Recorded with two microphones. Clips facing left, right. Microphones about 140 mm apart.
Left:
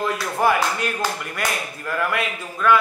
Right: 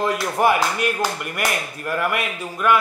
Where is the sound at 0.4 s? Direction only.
15° right (ahead or behind).